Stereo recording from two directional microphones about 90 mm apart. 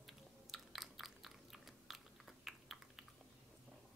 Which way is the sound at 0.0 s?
Centre (ahead or behind).